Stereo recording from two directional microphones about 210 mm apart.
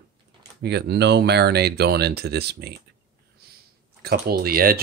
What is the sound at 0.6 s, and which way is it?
Speech, 50° right (ahead or behind).